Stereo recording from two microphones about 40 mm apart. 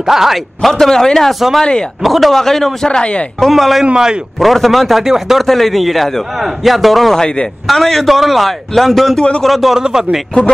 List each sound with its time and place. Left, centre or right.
0.0 s speech: centre
0.6 s a man's voice: centre
2.0 s a man's voice: centre
3.0 s a man's voice: left
3.3 s a man's voice: centre
3.8 s a man's voice: right
4.4 s a man's voice: centre
5.0 s speech: centre
5.4 s a man's voice: centre
7.2 s a man's voice: left
7.6 s a man's voice: centre
9.8 s speech: centre